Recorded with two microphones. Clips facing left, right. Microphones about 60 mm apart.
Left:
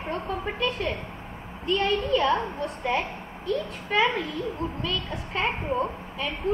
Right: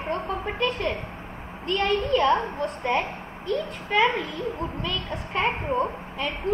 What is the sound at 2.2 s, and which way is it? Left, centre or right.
Speech, right.